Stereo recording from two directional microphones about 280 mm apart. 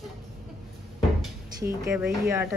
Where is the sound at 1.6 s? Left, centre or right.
Centre.